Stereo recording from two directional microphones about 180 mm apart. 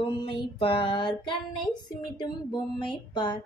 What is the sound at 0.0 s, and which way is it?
Child singing, 30° left (ahead or behind).